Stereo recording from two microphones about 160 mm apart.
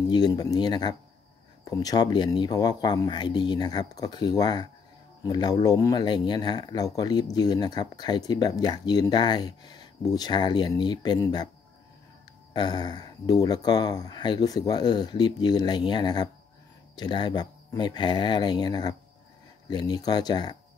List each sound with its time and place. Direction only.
0.1 s speech: 25° left (ahead or behind)
12.5 s speech: 25° left (ahead or behind)